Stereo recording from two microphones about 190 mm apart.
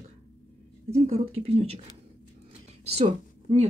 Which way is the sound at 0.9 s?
35° right (ahead or behind).